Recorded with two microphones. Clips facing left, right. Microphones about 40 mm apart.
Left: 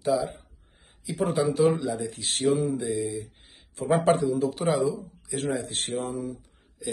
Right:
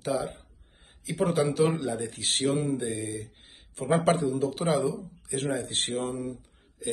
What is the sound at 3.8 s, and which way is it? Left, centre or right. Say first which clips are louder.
A man's voice: left 2 dB; right.